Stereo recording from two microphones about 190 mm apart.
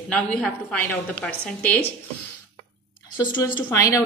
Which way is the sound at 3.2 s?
20° left (ahead or behind).